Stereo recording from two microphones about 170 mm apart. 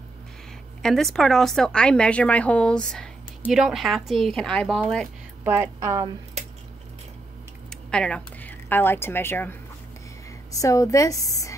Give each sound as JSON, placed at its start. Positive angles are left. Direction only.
{"t": 0.8, "sound": "a woman's voice", "side_deg": 0}
{"t": 5.4, "sound": "speech", "side_deg": -15}
{"t": 7.9, "sound": "a woman's voice", "side_deg": 5}